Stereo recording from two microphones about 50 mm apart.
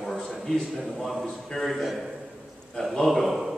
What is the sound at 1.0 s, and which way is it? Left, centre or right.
Speech, centre.